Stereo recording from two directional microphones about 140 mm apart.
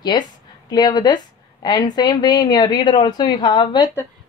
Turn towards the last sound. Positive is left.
turn(degrees=35)  # may be behind; listen again after turning